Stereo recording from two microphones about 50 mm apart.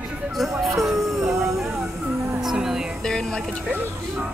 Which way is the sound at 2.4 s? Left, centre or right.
Centre.